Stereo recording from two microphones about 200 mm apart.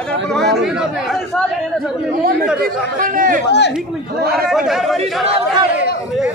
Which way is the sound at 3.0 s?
45° right (ahead or behind).